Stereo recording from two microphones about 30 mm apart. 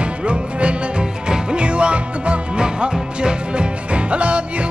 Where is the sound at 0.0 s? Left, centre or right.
Right.